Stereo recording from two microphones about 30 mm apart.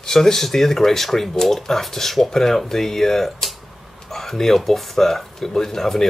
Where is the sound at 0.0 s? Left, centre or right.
Centre.